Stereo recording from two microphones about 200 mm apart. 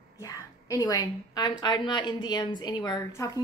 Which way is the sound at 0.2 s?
15° left (ahead or behind).